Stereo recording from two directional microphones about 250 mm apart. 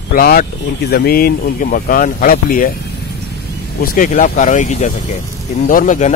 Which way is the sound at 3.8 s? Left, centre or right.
Left.